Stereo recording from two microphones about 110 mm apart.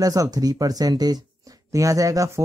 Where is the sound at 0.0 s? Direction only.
35° right (ahead or behind).